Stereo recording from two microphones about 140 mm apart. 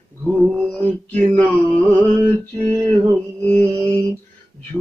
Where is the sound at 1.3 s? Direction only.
10° left (ahead or behind).